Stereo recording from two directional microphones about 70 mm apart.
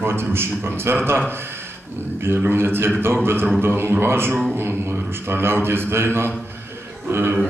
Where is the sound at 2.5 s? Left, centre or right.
Right.